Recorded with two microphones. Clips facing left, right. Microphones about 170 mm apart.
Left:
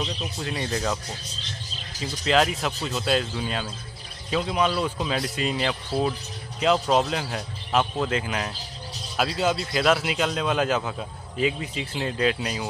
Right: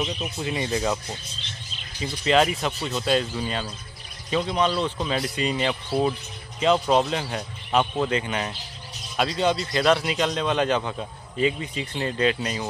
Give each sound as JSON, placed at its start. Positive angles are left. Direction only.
{"t": 0.0, "sound": "a man's voice", "side_deg": -10}
{"t": 1.4, "sound": "bird", "side_deg": 40}
{"t": 2.2, "sound": "a man's voice", "side_deg": 0}